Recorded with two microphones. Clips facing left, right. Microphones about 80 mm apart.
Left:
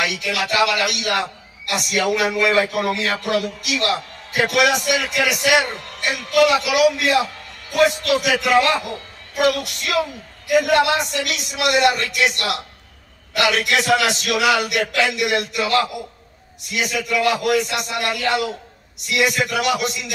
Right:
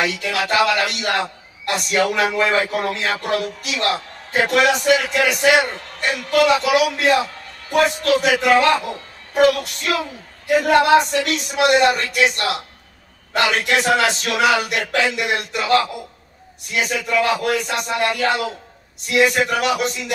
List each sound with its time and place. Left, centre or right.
0.0 s a man's voice: right
13.3 s a man's voice: right